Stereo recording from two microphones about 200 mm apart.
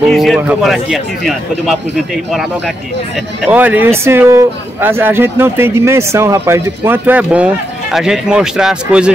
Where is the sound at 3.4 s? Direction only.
10° right (ahead or behind).